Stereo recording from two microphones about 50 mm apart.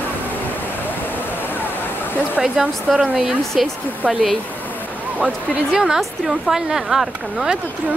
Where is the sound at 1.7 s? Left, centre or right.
Left.